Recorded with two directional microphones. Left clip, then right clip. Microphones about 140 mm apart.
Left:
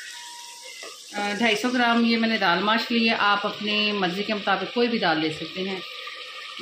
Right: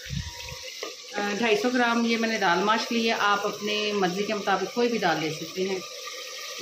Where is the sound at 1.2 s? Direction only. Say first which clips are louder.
Left 1 dB; 40° left (ahead or behind).